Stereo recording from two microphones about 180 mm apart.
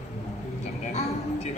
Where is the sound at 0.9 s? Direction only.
40° left (ahead or behind).